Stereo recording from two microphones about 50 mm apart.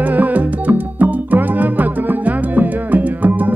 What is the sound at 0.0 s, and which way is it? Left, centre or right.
Music, right.